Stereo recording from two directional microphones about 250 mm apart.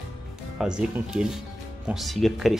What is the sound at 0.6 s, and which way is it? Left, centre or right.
Speech, centre.